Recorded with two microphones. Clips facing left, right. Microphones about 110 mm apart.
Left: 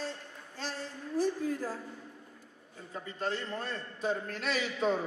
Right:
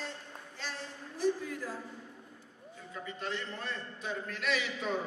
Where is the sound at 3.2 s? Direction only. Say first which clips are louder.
Left 5 dB; 40° left (ahead or behind).